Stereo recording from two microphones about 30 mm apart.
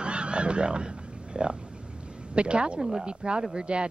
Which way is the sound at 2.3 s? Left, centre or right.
Right.